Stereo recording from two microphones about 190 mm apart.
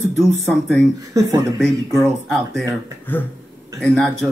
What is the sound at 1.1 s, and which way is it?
Speech, 15° right (ahead or behind).